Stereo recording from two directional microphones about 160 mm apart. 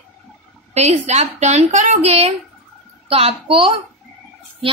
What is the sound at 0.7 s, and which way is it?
A woman's voice, 45° right (ahead or behind).